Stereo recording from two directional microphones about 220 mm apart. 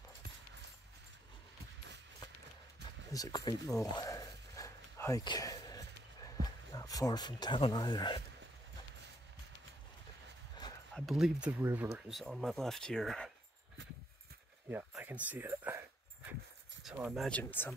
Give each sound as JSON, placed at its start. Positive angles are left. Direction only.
{"t": 3.1, "sound": "a sound", "side_deg": 15}
{"t": 6.4, "sound": "speech", "side_deg": 15}
{"t": 11.0, "sound": "speech", "side_deg": 0}
{"t": 14.7, "sound": "speech", "side_deg": -10}
{"t": 16.8, "sound": "speech", "side_deg": 0}